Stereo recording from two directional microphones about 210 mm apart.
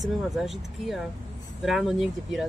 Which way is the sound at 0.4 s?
Centre (ahead or behind).